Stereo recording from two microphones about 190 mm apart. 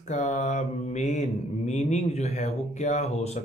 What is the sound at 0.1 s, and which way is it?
Speech, 40° left (ahead or behind).